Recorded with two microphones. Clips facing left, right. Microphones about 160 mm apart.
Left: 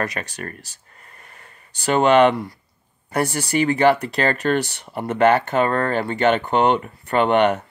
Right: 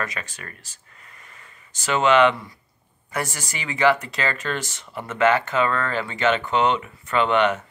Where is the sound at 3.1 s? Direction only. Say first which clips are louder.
Left 7 dB; 60° left (ahead or behind).